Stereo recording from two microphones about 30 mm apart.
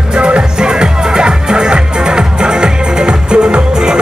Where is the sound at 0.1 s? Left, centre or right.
Right.